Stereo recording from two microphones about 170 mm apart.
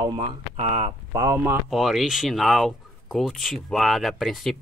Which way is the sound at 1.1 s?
15° right (ahead or behind).